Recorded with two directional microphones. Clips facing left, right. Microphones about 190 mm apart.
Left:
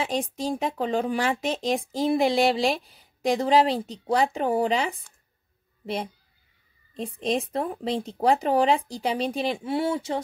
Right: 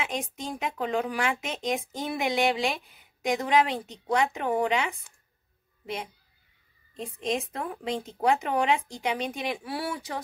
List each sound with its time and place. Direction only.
0.0 s speech: 35° left (ahead or behind)
6.9 s speech: 35° left (ahead or behind)